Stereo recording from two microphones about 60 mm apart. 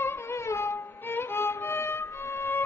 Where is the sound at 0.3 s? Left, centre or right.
Left.